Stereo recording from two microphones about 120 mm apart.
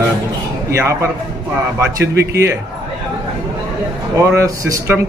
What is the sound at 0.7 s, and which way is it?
Speech, 25° right (ahead or behind).